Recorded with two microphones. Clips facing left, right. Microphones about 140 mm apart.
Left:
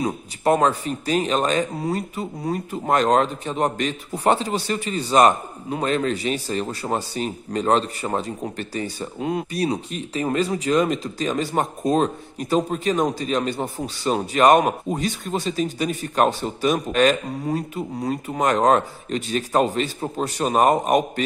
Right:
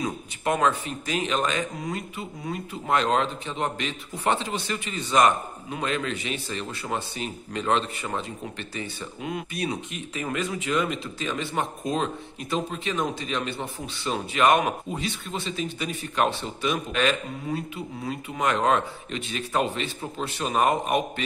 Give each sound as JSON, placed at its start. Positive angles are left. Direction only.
{"t": 0.0, "sound": "speech", "side_deg": 35}